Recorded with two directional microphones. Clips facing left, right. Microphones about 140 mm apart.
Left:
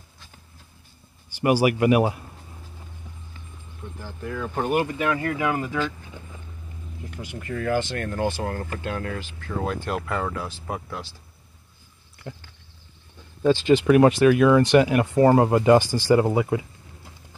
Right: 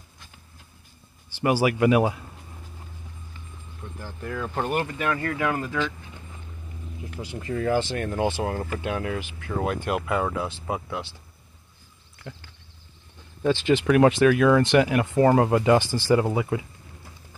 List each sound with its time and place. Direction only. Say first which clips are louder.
1.3 s speech: left 2 dB; 15° left (ahead or behind)
4.0 s speech: left 1 dB; 5° left (ahead or behind)
7.2 s speech: right 2 dB; 25° right (ahead or behind)
14.2 s speech: left 2 dB; 15° left (ahead or behind)